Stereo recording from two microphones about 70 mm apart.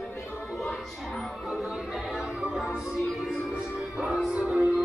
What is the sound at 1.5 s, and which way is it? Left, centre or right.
Music, centre.